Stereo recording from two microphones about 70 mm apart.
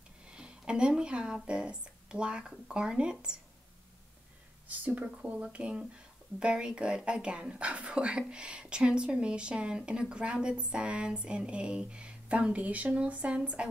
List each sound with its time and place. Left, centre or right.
0.3 s speech: centre
4.6 s a woman's voice: right